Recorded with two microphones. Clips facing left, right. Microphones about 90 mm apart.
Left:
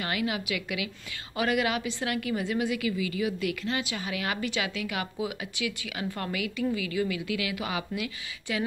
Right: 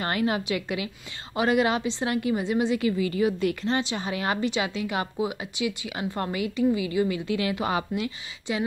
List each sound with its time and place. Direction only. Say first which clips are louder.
0.0 s a woman's voice: right 5 dB; 40° right (ahead or behind)
8.5 s a woman's voice: right 3 dB; 25° right (ahead or behind)